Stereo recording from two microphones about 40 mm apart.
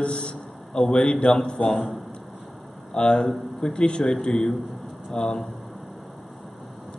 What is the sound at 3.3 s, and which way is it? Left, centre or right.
Speech, centre.